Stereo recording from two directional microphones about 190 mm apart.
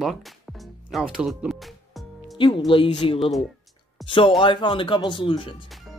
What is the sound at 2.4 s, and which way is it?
Speech, 25° left (ahead or behind).